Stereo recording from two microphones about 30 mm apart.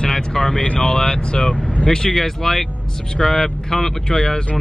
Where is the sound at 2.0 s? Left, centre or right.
Centre.